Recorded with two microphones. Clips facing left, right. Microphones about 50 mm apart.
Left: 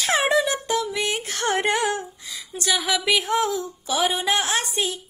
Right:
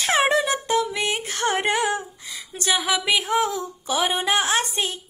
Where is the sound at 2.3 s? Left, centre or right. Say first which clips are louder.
Right 1 dB; right.